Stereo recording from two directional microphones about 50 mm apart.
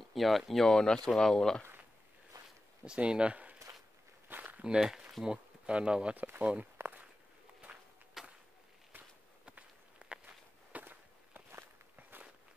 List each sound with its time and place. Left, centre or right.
0.1 s speech: centre
2.8 s speech: centre
4.4 s walk: right
4.7 s speech: centre
6.1 s speech: right
6.6 s walk: right
8.2 s a sound: centre
9.5 s walk: right
10.2 s walk: right